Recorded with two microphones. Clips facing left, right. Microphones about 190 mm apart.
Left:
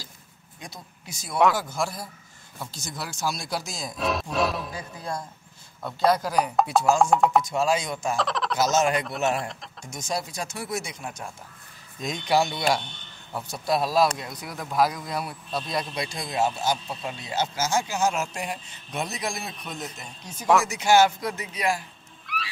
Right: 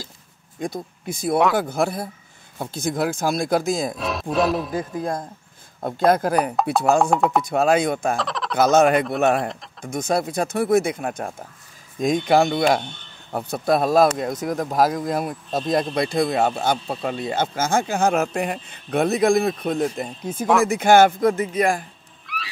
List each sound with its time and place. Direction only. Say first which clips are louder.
0.6 s speech: right 15 dB; 50° right (ahead or behind)
3.9 s speech: right 3 dB; centre (ahead or behind)
4.7 s speech: right 8 dB; 50° right (ahead or behind)
6.5 s speech: right 3 dB; centre (ahead or behind)
7.4 s speech: right 6 dB; 60° right (ahead or behind)
8.2 s a sound: even; centre (ahead or behind)
8.5 s speech: right 8 dB; 55° right (ahead or behind)
9.4 s speech: right 7 dB; centre (ahead or behind)
9.8 s speech: right 9 dB; 55° right (ahead or behind)
22.3 s wheeze: even; centre (ahead or behind)